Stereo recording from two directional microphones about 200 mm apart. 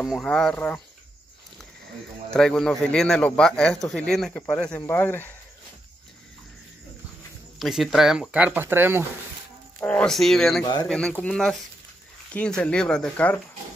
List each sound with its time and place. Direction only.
0.0 s a man's voice: centre (ahead or behind)
2.3 s a man's voice: 5° left (ahead or behind)
7.5 s a man's voice: centre (ahead or behind)
9.8 s a man's voice: 5° left (ahead or behind)
10.6 s speech: 20° left (ahead or behind)
10.9 s a man's voice: 5° left (ahead or behind)